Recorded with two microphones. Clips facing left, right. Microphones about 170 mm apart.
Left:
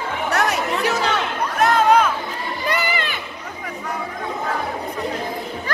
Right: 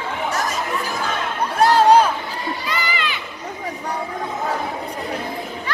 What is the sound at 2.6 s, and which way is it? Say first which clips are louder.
Children playing: left 2 dB; 60° left (ahead or behind).